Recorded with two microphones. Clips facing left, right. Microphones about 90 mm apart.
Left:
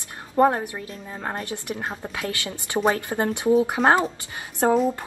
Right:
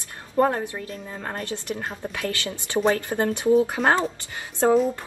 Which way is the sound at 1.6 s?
25° left (ahead or behind).